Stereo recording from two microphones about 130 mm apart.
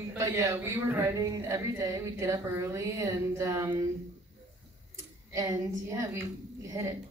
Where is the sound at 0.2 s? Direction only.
25° right (ahead or behind).